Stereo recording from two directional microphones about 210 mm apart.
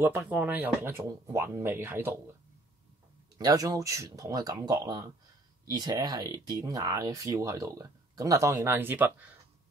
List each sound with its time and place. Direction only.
0.0 s speech: 10° right (ahead or behind)
3.3 s speech: 15° right (ahead or behind)